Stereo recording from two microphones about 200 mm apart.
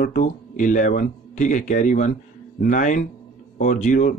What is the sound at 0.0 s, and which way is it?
Speech, 40° left (ahead or behind).